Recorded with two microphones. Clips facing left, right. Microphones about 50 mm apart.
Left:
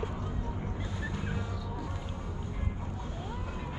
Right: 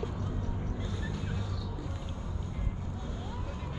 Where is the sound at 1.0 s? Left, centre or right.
Left.